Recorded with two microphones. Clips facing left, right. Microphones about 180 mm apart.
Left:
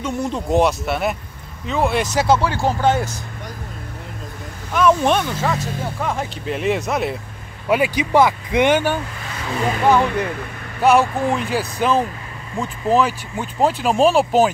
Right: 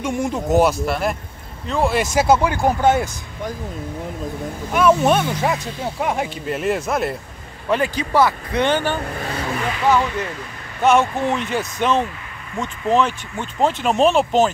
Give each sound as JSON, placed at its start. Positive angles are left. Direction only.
{"t": 0.0, "sound": "speech", "side_deg": -10}
{"t": 2.9, "sound": "speech", "side_deg": -50}
{"t": 4.7, "sound": "speech", "side_deg": -10}
{"t": 6.4, "sound": "speech", "side_deg": 0}
{"t": 7.7, "sound": "speech", "side_deg": 10}
{"t": 9.0, "sound": "vehicle", "side_deg": -45}
{"t": 9.8, "sound": "speech", "side_deg": 15}
{"t": 11.1, "sound": "speech", "side_deg": 0}